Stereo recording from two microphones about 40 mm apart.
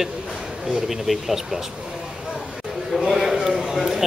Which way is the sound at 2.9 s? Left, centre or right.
Centre.